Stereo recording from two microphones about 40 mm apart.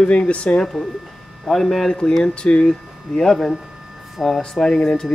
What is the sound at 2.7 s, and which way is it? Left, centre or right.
Speech, centre.